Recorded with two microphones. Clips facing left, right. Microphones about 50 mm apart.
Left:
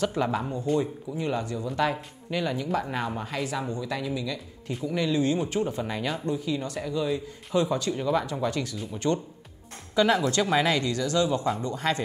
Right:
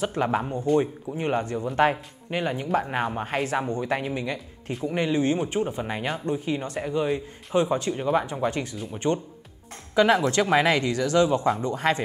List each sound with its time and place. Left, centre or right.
0.1 s speech: right
10.2 s speech: right